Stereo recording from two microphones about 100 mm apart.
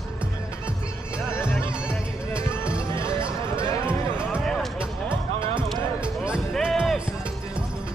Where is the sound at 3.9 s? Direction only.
10° right (ahead or behind).